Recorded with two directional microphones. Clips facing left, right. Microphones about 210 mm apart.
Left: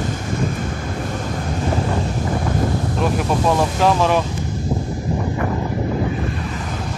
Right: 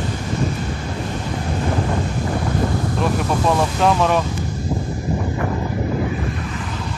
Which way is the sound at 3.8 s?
Centre (ahead or behind).